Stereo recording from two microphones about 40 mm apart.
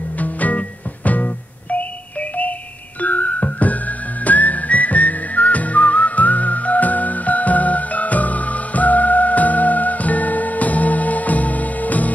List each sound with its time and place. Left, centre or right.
0.2 s music: left